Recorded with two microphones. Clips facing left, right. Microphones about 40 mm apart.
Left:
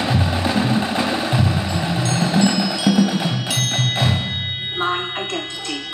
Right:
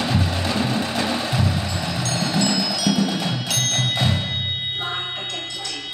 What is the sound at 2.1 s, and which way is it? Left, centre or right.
Tubular bells, centre.